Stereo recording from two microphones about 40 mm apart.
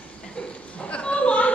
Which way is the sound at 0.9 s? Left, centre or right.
Left.